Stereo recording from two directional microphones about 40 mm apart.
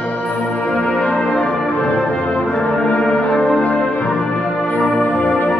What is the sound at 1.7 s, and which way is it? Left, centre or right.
Music, left.